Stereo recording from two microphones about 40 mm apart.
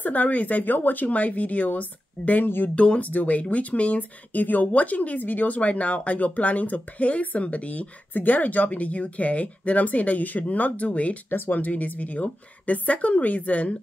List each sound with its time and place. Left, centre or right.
0.0 s speech: left
2.4 s speech: left
2.7 s speech: left
4.3 s speech: left
8.1 s speech: left
11.2 s speech: left